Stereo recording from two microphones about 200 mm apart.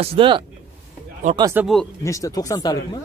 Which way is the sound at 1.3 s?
15° right (ahead or behind).